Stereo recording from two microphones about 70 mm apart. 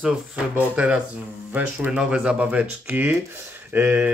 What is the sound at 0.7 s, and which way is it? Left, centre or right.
Speech, centre.